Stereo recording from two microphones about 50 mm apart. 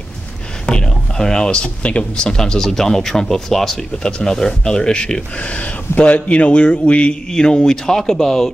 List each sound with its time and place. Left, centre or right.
0.7 s speech: centre